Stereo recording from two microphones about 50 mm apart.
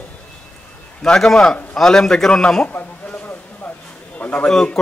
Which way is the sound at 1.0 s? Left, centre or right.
Centre.